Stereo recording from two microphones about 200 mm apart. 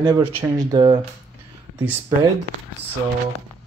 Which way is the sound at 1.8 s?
10° right (ahead or behind).